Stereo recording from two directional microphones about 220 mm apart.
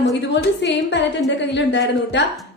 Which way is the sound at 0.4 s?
50° left (ahead or behind).